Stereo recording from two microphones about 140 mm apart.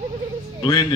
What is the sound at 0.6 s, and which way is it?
Speech, 30° left (ahead or behind).